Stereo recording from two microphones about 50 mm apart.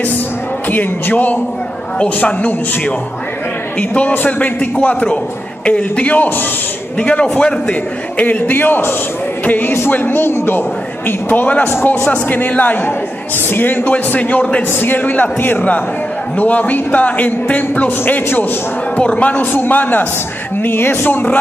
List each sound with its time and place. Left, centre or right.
0.7 s a man's voice: left
4.3 s a man's voice: left
7.0 s a man's voice: left
8.2 s speech: left
14.7 s speech: left
15.0 s speech: left
18.9 s speech: left